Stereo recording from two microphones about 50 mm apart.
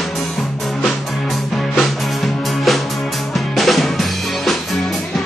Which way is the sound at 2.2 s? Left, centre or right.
Centre.